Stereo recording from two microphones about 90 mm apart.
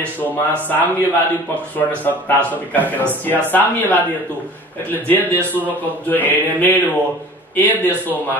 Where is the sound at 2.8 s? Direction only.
20° right (ahead or behind).